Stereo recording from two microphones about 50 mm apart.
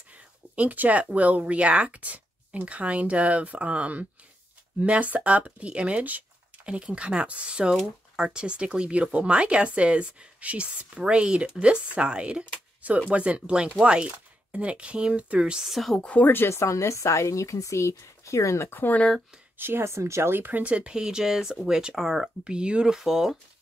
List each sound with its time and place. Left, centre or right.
0.6 s speech: right
15.6 s speech: centre
16.0 s speech: left
16.4 s speech: left
18.7 s speech: left
19.6 s speech: right
19.9 s speech: right
20.3 s speech: right
20.6 s speech: right
20.9 s speech: centre
22.4 s speech: centre
22.9 s speech: centre